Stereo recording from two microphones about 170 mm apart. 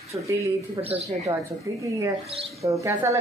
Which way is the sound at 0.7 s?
35° right (ahead or behind).